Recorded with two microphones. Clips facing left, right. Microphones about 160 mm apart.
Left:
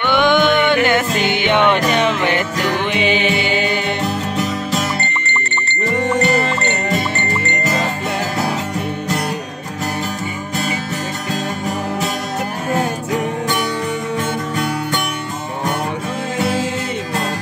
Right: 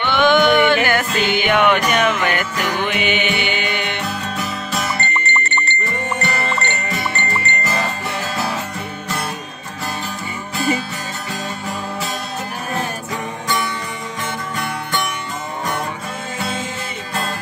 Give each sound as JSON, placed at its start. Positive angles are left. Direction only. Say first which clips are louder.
{"t": 0.0, "sound": "music", "louder": "even", "side_deg": 15}